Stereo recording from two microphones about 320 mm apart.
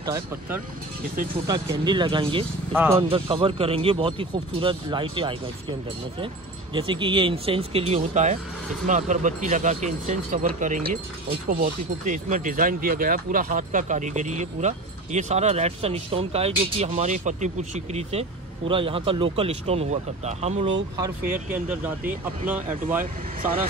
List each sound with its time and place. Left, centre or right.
0.0 s speech: centre
6.7 s speech: centre
21.5 s speech: centre
23.4 s speech: right